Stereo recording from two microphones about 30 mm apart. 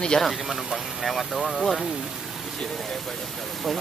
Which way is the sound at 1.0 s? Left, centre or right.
Centre.